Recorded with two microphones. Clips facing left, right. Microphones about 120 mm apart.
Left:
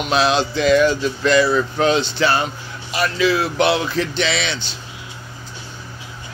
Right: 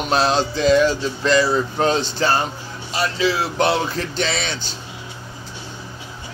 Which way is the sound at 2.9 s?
30° right (ahead or behind).